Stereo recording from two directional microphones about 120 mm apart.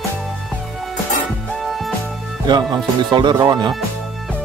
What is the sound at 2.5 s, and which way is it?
Speech, 35° right (ahead or behind).